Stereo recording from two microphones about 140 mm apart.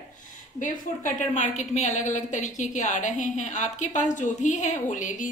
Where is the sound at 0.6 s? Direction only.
70° left (ahead or behind).